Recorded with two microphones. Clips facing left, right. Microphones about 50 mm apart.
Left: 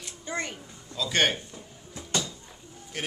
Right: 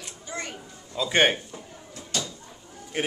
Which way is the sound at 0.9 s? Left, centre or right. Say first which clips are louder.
Right 4 dB; right.